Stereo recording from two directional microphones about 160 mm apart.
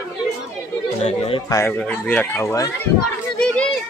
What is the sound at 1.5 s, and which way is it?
Speech, 20° left (ahead or behind).